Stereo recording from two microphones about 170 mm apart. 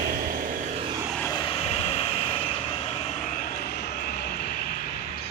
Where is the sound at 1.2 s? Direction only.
25° left (ahead or behind).